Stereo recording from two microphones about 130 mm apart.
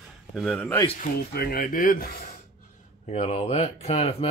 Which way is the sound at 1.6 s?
90° left.